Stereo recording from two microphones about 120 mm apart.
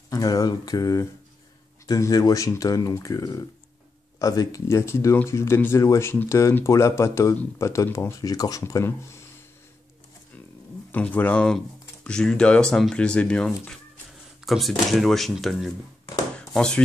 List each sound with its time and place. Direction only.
0.1 s speech: 30° left (ahead or behind)
10.9 s speech: 15° left (ahead or behind)
16.3 s a sound: 5° left (ahead or behind)